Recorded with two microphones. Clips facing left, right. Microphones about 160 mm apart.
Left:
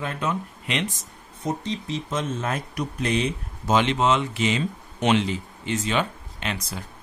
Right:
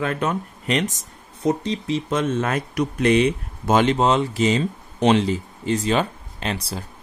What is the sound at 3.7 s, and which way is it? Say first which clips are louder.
Speech: right 3 dB; 40° right (ahead or behind).